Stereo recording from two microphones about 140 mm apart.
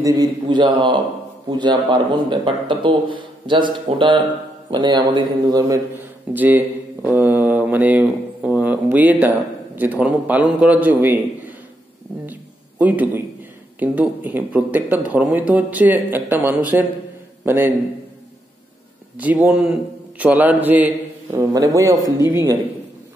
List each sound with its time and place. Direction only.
0.0 s a man's voice: 30° right (ahead or behind)
5.9 s speech: 10° right (ahead or behind)
12.3 s a sound: 10° right (ahead or behind)
13.7 s speech: 10° right (ahead or behind)
19.1 s a man's voice: 10° right (ahead or behind)
21.4 s a man's voice: 25° right (ahead or behind)